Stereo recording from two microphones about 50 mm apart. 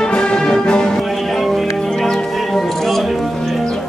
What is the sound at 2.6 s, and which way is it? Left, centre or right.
Music, centre.